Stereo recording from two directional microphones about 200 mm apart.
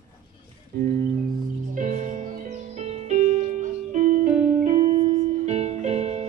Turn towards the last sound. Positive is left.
turn(degrees=-30)  # may be behind; listen again after turning